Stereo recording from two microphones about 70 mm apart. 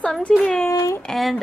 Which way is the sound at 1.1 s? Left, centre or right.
Centre.